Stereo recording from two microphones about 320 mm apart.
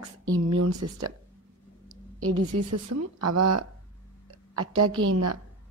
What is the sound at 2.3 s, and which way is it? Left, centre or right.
A woman's voice, right.